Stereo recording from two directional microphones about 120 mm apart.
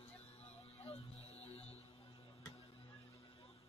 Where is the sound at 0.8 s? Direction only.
55° left (ahead or behind).